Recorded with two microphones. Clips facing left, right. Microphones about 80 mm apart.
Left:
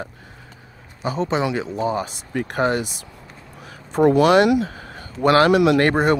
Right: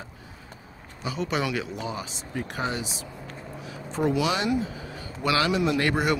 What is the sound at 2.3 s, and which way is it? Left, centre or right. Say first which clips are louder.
Speech: left 9 dB; left.